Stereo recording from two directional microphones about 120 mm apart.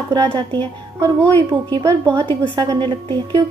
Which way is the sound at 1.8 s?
25° right (ahead or behind).